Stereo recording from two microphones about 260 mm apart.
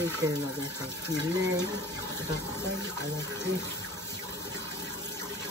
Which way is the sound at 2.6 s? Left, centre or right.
Right.